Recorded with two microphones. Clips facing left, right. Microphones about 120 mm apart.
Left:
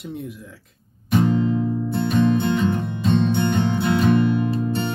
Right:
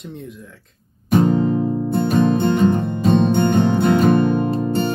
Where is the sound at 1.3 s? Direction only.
40° right (ahead or behind).